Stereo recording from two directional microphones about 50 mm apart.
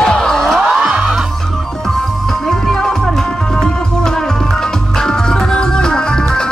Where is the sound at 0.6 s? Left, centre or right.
Centre.